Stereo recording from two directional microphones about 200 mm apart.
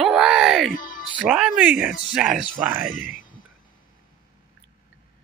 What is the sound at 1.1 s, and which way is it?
Speech, 5° right (ahead or behind).